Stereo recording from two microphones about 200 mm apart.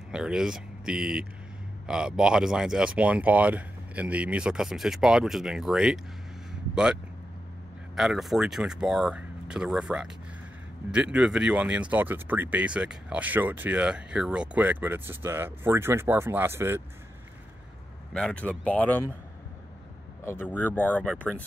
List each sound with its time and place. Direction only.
0.1 s speech: 5° right (ahead or behind)
18.1 s speech: 5° left (ahead or behind)
20.2 s speech: 10° left (ahead or behind)